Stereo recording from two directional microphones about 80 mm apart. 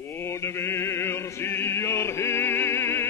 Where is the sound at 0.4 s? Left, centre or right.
Left.